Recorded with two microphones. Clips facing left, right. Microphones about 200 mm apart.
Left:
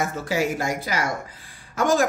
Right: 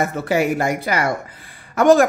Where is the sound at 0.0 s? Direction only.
60° right (ahead or behind).